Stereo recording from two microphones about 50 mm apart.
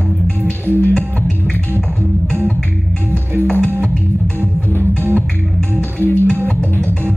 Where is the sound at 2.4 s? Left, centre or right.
Left.